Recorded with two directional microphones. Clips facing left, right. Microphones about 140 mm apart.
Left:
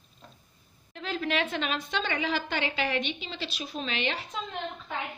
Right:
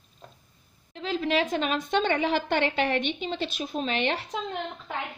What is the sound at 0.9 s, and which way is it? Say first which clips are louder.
A woman's voice: right 4 dB; 30° right (ahead or behind).